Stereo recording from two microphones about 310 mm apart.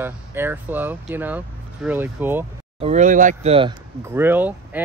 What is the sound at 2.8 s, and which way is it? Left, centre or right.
Speech, right.